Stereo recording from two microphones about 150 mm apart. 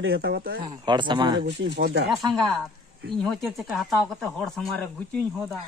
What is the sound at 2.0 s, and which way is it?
Speech, centre (ahead or behind).